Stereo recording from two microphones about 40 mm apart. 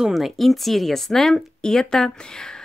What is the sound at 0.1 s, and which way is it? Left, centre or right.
Speech, centre.